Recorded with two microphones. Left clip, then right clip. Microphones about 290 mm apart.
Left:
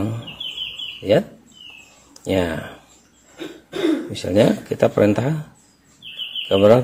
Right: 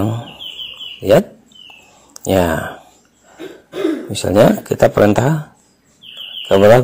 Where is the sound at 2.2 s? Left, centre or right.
Right.